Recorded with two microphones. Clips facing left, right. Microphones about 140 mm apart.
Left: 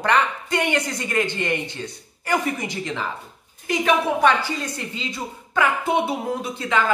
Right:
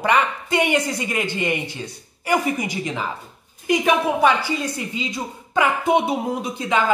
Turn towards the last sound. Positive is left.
turn(degrees=-20)  # may be behind; listen again after turning